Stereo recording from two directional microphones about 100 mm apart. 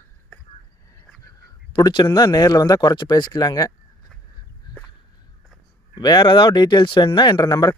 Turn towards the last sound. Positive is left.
turn(degrees=45)  # may be behind; listen again after turning